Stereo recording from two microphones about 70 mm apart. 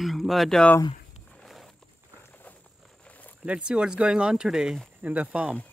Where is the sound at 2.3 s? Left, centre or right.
Left.